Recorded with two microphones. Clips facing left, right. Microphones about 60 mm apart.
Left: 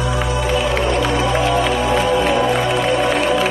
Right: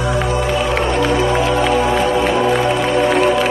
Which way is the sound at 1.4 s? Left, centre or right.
Centre.